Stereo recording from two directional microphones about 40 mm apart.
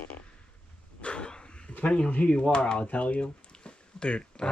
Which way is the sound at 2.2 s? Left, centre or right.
Left.